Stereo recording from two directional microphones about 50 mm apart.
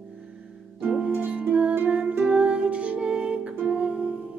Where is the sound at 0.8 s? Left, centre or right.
Right.